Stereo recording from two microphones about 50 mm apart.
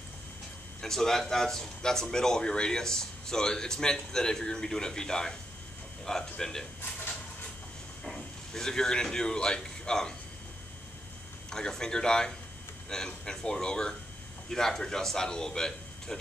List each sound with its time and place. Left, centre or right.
0.7 s speech: centre
6.3 s speech: centre
6.8 s a sound: left
8.0 s speech: centre
11.5 s speech: centre